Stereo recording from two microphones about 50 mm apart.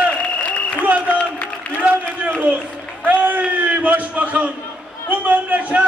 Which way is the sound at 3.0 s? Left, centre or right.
Right.